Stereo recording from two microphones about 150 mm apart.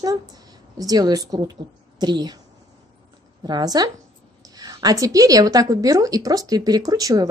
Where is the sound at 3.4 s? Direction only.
25° right (ahead or behind).